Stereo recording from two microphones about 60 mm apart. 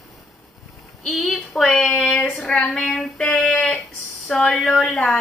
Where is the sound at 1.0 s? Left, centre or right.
Centre.